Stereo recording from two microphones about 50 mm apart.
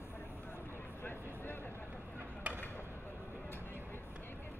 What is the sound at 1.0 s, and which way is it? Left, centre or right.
Vehicle, left.